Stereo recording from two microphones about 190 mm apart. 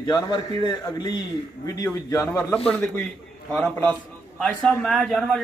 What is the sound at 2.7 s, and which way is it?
A man's voice, 5° left (ahead or behind).